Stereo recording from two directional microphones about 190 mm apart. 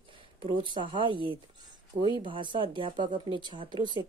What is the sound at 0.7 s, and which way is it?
A woman's voice, 25° right (ahead or behind).